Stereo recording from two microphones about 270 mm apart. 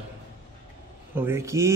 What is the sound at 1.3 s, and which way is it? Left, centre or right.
Speech, centre.